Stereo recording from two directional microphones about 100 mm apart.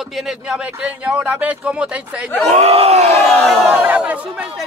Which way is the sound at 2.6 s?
80° right.